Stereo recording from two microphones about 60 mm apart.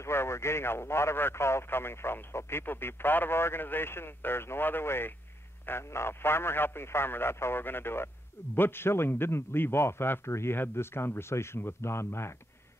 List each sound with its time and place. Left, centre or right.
0.0 s a man's voice: left